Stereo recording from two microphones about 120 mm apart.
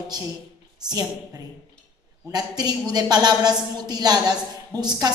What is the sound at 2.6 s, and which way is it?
A woman's voice, 35° right (ahead or behind).